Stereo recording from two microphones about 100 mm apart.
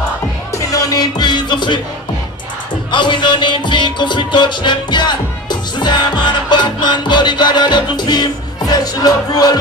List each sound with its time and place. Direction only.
0.6 s music: 35° left (ahead or behind); by 1.8 s 50° left (ahead or behind)
2.9 s music: 50° left (ahead or behind)